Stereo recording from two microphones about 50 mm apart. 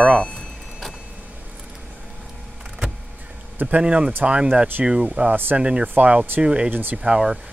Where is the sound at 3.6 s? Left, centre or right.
Right.